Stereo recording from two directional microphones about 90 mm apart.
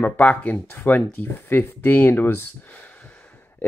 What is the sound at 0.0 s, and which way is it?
Speech, 15° left (ahead or behind).